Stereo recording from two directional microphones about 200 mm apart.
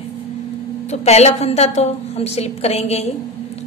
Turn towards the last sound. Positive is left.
turn(degrees=30)  # may be behind; listen again after turning